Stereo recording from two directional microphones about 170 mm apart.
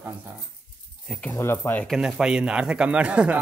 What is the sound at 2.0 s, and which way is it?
Speech, 5° right (ahead or behind).